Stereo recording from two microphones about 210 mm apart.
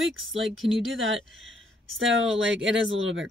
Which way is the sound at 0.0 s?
65° right (ahead or behind).